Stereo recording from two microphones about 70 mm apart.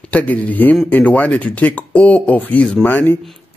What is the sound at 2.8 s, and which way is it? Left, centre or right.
Speech, left.